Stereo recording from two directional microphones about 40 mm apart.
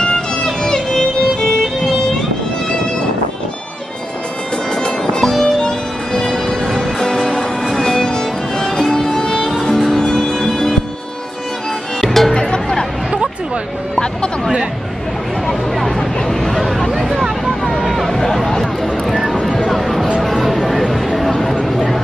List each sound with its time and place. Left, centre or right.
0.7 s music: centre
5.2 s music: centre
12.0 s music: centre
12.4 s music: centre
15.4 s a sound: centre